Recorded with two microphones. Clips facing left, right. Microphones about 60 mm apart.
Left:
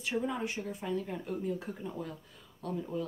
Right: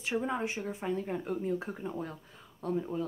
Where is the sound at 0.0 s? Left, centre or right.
Right.